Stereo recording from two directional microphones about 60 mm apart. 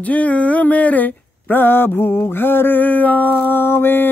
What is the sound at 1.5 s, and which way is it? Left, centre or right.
Mantra, left.